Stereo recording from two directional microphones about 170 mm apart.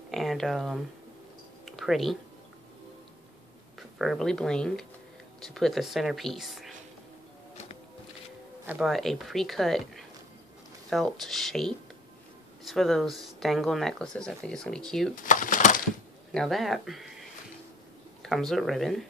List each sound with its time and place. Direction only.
0.1 s speech: centre (ahead or behind)
1.7 s a sound: centre (ahead or behind)
4.0 s speech: centre (ahead or behind)
8.6 s speech: 5° right (ahead or behind)
15.2 s a sound: 50° left (ahead or behind)
16.3 s speech: centre (ahead or behind)